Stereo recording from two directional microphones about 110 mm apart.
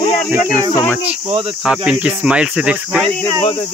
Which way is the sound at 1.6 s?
5° right (ahead or behind).